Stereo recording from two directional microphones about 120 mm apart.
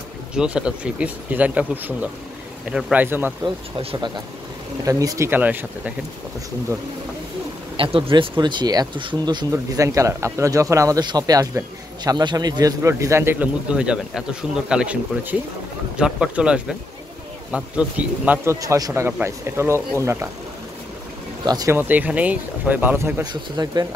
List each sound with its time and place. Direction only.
0.3 s speech: 5° right (ahead or behind)
3.4 s speech: 40° right (ahead or behind)
4.8 s speech: 30° right (ahead or behind)
7.7 s speech: 50° right (ahead or behind)
9.5 s speech: 25° right (ahead or behind)
21.5 s speech: 35° right (ahead or behind)
21.7 s speech: 15° right (ahead or behind)
23.5 s speech: 30° right (ahead or behind)